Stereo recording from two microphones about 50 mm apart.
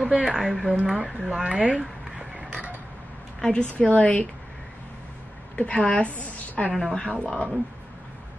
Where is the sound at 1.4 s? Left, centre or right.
Right.